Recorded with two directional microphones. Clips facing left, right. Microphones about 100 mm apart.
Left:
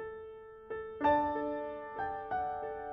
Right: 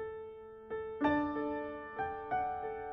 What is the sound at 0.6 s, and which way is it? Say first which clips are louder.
Music: right 1 dB; 35° left (ahead or behind).